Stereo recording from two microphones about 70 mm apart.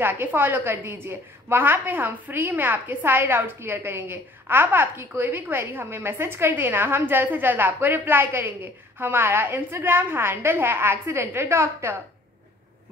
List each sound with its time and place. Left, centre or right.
0.0 s a woman's voice: right